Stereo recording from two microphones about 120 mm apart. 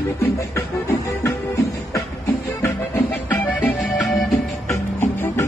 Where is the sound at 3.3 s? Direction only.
15° left (ahead or behind).